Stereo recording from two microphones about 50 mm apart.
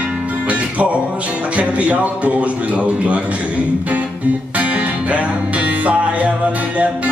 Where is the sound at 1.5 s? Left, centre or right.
Right.